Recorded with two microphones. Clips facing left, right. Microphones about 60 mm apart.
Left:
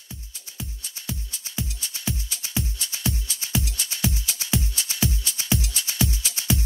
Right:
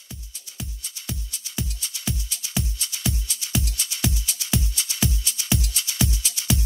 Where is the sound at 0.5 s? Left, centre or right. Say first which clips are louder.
Even; left.